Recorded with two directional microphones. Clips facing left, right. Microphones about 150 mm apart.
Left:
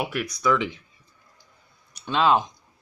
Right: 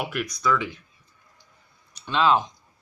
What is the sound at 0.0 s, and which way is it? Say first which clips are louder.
Speech: left 1 dB; 5° left (ahead or behind).